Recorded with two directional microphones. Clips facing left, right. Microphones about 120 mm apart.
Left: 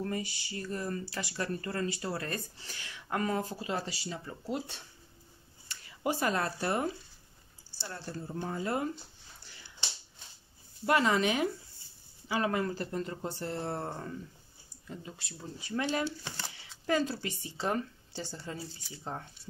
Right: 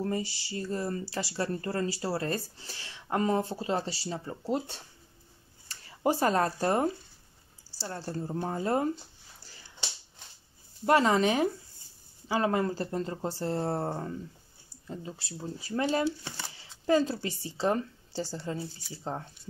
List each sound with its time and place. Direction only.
0.0 s speech: 30° right (ahead or behind)
10.9 s speech: 35° right (ahead or behind)